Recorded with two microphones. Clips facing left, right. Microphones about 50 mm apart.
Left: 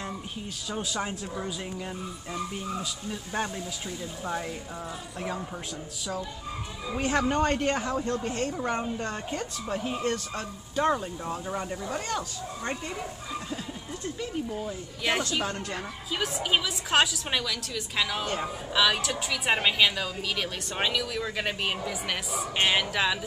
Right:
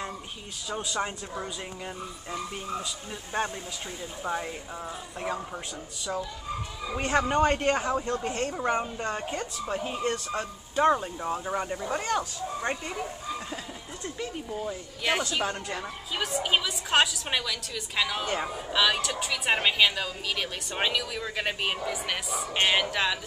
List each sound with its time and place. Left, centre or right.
0.7 s speech: centre
3.3 s speech: centre
6.9 s speech: centre
14.2 s speech: centre